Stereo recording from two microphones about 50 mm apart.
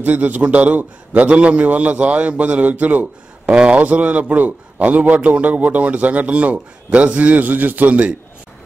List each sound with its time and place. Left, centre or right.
0.0 s a man's voice: right
3.4 s a man's voice: right